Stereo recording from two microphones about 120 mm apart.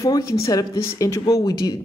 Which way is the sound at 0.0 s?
30° left (ahead or behind).